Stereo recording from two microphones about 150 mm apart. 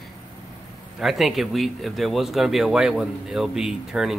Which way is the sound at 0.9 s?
Centre (ahead or behind).